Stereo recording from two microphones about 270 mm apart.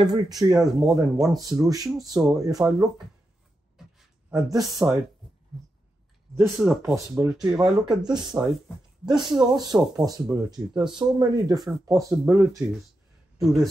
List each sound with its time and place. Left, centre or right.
0.3 s speech: centre
1.4 s speech: centre
4.3 s speech: centre
6.3 s speech: centre
8.1 s speech: centre
13.4 s a man's voice: centre